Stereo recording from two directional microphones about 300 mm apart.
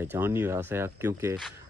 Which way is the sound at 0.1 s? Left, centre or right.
Centre.